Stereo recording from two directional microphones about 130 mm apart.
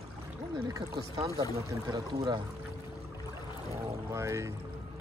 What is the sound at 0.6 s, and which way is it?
Speech, 30° right (ahead or behind).